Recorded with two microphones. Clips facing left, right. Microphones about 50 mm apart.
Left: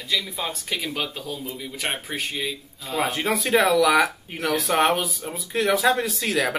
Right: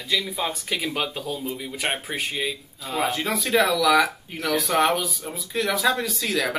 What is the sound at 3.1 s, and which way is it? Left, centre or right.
A man's voice, left.